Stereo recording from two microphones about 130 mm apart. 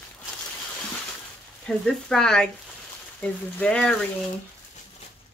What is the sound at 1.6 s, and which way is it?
Speech, 5° left (ahead or behind).